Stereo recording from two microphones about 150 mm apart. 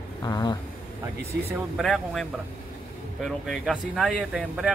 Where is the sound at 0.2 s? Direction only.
25° left (ahead or behind).